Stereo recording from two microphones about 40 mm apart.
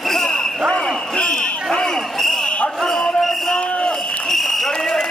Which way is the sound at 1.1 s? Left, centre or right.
Left.